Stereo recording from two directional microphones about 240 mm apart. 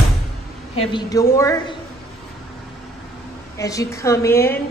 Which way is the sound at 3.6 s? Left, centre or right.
Centre.